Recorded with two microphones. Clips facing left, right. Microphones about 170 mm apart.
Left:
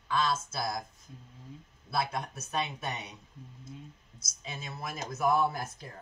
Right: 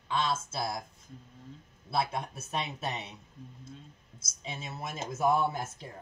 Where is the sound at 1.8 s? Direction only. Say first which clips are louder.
Right 1 dB; 25° right (ahead or behind).